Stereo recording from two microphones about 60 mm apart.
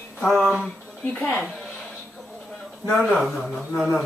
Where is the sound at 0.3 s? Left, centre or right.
Centre.